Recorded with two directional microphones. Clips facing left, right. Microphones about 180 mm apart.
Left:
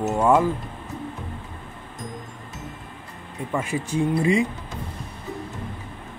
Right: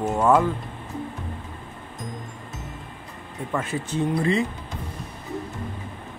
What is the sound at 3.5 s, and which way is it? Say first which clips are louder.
Speech: left 2 dB; 10° left (ahead or behind).